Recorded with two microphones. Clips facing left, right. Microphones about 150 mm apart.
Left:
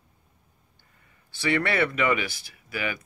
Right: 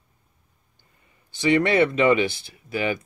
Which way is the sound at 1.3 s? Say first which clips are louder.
Right 6 dB; 20° right (ahead or behind).